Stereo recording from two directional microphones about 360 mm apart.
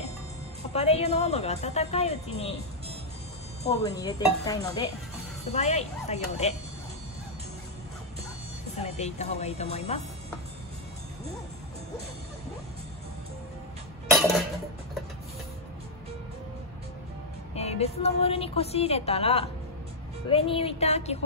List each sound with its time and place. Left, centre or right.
0.7 s a woman's voice: centre
3.6 s a woman's voice: centre
8.7 s a woman's voice: centre
17.6 s a woman's voice: centre